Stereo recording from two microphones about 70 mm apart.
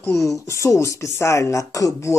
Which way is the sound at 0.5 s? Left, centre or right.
Left.